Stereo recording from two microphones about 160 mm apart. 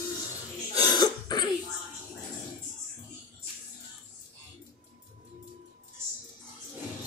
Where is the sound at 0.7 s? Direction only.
25° left (ahead or behind).